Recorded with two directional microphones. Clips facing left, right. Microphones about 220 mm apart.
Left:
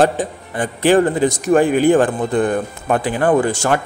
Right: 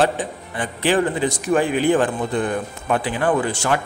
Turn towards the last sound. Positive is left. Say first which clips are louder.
# left 5 dB
turn(degrees=45)  # may be behind; listen again after turning